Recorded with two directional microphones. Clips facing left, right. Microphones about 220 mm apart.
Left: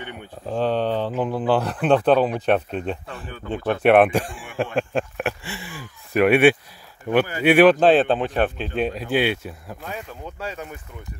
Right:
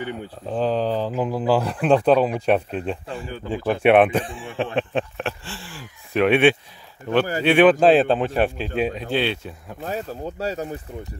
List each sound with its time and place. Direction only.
0.5 s speech: centre (ahead or behind)
9.1 s speech: 10° left (ahead or behind)
9.8 s speech: 35° right (ahead or behind)